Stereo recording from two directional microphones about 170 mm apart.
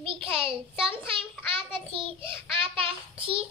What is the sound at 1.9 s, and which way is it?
A child's voice, 30° right (ahead or behind).